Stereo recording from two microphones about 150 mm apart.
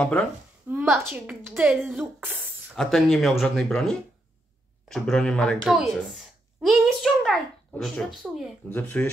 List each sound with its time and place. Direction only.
0.7 s a woman's voice: 15° right (ahead or behind)
2.7 s speech: centre (ahead or behind)
4.8 s a sound: centre (ahead or behind)
7.7 s speech: 5° left (ahead or behind)
8.6 s speech: 10° left (ahead or behind)